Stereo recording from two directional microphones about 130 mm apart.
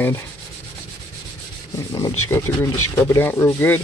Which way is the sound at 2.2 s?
20° left (ahead or behind).